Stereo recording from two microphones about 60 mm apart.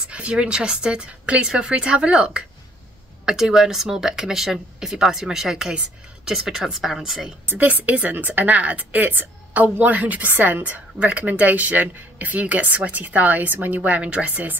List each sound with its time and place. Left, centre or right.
0.1 s speech: centre
7.4 s a woman's voice: right